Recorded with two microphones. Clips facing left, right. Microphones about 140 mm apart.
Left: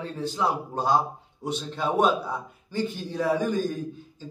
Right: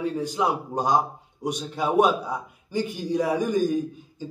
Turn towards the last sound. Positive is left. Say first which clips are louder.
# right 6 dB
turn(degrees=-15)  # may be behind; listen again after turning